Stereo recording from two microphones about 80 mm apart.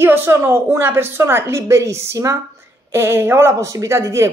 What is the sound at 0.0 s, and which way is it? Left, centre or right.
Speech, right.